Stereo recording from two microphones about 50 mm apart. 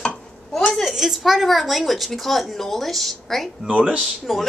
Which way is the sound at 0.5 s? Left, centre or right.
Centre.